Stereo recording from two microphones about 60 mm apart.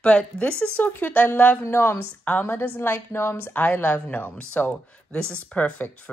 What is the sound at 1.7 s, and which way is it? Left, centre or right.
A woman's voice, left.